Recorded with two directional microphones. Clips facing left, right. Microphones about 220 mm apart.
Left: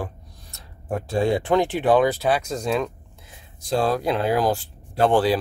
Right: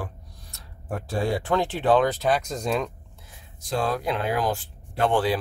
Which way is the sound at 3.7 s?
35° left (ahead or behind).